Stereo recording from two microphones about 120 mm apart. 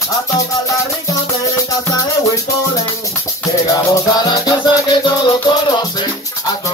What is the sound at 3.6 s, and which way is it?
Music, 30° left (ahead or behind).